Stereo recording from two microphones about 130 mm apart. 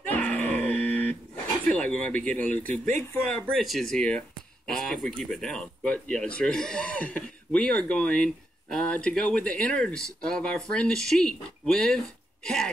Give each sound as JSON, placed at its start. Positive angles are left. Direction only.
{"t": 0.1, "sound": "grunt", "side_deg": 10}
{"t": 1.7, "sound": "speech", "side_deg": 10}
{"t": 2.6, "sound": "speech", "side_deg": -90}
{"t": 3.5, "sound": "speech", "side_deg": 0}